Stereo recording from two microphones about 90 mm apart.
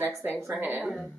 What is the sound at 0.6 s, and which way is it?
Speech, 20° right (ahead or behind).